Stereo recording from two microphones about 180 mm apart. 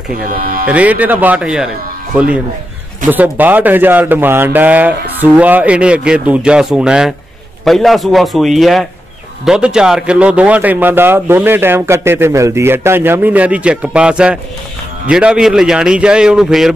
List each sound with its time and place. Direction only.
0.3 s speech: 55° right (ahead or behind)
0.7 s a man's voice: 10° right (ahead or behind)